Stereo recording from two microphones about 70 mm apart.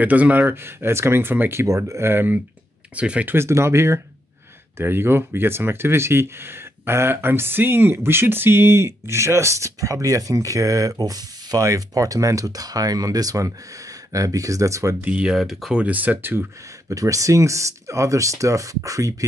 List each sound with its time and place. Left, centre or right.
0.0 s speech: right
3.0 s speech: centre
3.3 s speech: right
15.0 s speech: right
15.2 s speech: centre
15.7 s speech: right
16.9 s speech: right